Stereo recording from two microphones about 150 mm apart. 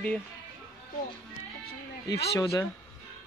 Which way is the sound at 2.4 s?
25° left (ahead or behind).